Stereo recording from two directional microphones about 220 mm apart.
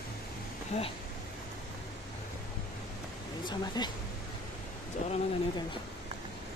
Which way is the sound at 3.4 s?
20° left (ahead or behind).